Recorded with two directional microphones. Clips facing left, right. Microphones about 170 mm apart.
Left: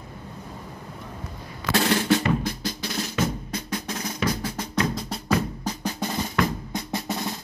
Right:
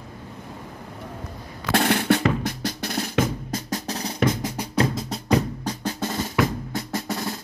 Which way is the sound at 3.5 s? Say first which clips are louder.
Right 2 dB; 40° right (ahead or behind).